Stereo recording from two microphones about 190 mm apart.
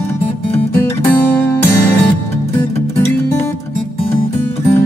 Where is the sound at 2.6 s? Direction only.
15° left (ahead or behind).